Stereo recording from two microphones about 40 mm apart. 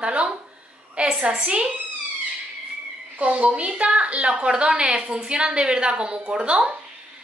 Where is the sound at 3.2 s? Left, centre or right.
Right.